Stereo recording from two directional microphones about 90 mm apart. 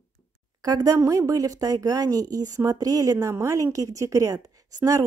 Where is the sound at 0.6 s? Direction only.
45° right (ahead or behind).